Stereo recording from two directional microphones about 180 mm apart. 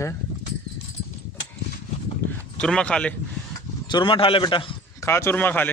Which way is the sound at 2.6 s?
5° left (ahead or behind).